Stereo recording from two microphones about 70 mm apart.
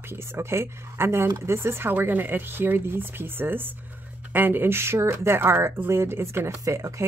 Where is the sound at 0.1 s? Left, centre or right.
Right.